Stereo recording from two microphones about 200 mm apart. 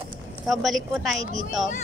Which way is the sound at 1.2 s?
35° right (ahead or behind).